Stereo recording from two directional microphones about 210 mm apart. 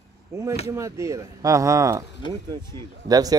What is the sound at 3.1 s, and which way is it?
Speech, 15° right (ahead or behind).